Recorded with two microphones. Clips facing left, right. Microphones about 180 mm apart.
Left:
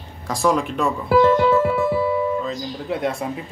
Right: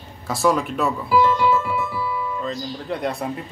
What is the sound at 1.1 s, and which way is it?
Music, 55° left (ahead or behind).